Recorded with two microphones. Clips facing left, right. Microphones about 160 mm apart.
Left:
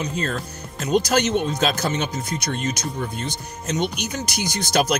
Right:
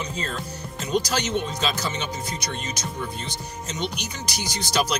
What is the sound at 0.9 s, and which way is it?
Speech, 50° left (ahead or behind).